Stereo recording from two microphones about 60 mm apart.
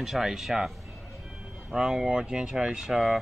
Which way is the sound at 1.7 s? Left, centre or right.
Centre.